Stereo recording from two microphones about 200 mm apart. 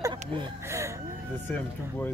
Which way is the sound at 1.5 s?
10° left (ahead or behind).